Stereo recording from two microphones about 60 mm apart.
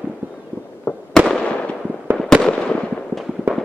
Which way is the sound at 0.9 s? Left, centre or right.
Left.